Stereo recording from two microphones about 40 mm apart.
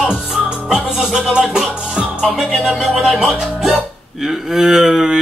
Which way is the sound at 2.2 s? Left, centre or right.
Centre.